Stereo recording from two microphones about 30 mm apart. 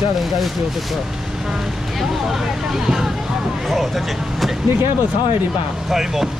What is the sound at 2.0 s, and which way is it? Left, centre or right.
Speech, centre.